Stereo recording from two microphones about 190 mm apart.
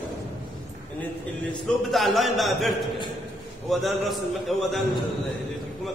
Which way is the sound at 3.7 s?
Centre (ahead or behind).